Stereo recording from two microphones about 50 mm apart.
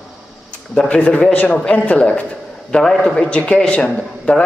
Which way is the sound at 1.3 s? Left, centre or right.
Left.